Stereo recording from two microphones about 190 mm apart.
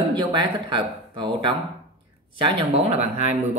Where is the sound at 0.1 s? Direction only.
25° right (ahead or behind).